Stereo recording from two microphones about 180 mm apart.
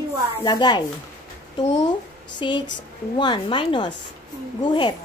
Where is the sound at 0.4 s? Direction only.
25° left (ahead or behind).